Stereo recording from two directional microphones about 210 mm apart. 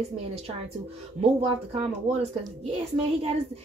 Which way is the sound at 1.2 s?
30° right (ahead or behind).